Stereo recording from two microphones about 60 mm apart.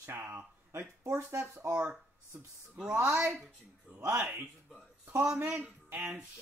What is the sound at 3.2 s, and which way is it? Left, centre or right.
Speech, centre.